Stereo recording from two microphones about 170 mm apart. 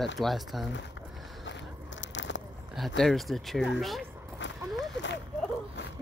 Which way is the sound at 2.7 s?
Centre (ahead or behind).